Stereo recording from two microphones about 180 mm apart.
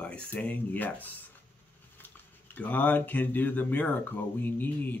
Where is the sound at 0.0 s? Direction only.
5° left (ahead or behind).